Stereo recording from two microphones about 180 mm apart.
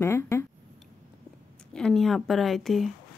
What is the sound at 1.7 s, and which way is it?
A woman's voice, 5° left (ahead or behind).